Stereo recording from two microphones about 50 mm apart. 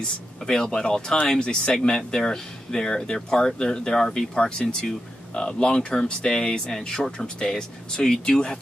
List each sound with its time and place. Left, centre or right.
0.5 s speech: centre